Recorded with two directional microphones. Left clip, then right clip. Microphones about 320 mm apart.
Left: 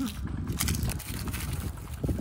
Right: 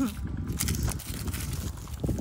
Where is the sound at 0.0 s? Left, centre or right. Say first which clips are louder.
Right 3 dB; centre.